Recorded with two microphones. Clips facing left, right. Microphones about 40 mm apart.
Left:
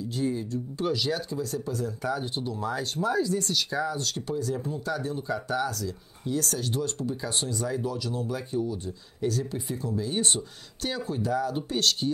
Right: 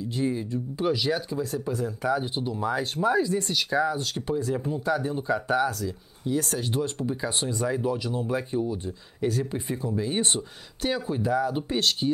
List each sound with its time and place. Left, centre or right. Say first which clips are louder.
0.1 s speech: right 2 dB; right